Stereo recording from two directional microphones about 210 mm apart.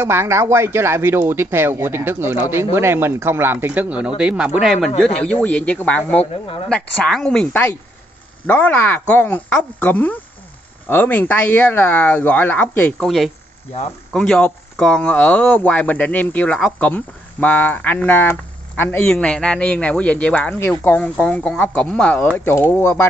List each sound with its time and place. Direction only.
0.0 s speech: 10° right (ahead or behind); by 6.2 s 5° left (ahead or behind)
6.4 s speech: 25° left (ahead or behind)
6.7 s speech: 5° left (ahead or behind)